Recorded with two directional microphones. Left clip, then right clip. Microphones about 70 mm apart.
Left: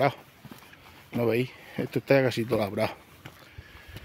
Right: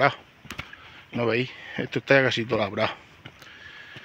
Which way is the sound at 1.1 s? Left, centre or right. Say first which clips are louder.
Right 1 dB; left.